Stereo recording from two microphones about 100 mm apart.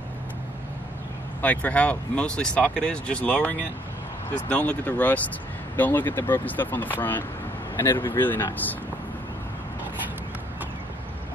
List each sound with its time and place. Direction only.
1.4 s speech: 15° left (ahead or behind)